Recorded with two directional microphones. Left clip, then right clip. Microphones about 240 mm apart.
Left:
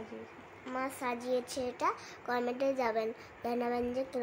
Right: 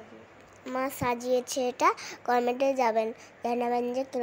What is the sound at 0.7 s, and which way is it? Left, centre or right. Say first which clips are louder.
A woman's voice: right 7 dB; right.